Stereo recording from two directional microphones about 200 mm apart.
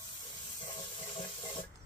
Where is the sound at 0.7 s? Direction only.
25° left (ahead or behind).